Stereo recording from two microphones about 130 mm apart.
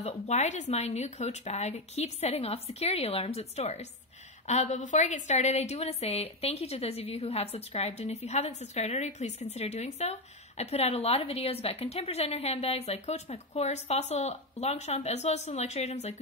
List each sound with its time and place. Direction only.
0.0 s a woman's voice: 60° left (ahead or behind)
4.5 s a woman's voice: 65° left (ahead or behind)